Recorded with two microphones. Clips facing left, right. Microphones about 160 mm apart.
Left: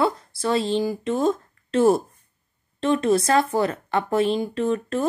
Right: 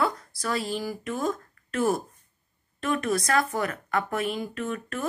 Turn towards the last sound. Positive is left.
turn(degrees=30)  # may be behind; listen again after turning